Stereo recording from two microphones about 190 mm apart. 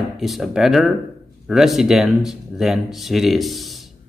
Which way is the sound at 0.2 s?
Centre (ahead or behind).